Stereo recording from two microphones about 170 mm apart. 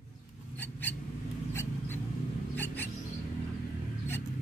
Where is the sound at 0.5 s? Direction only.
10° left (ahead or behind).